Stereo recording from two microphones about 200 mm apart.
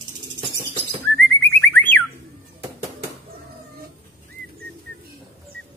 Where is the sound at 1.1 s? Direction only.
10° left (ahead or behind).